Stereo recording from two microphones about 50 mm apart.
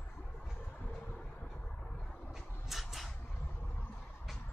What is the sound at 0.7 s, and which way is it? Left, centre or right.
Vehicle, left.